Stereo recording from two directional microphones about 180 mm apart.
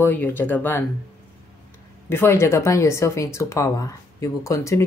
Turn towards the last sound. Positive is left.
turn(degrees=15)  # may be behind; listen again after turning